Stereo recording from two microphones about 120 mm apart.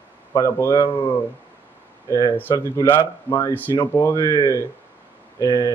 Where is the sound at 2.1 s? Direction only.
30° left (ahead or behind).